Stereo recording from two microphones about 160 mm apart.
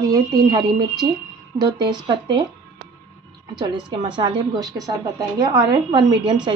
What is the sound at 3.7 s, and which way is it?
A woman's voice, 30° right (ahead or behind).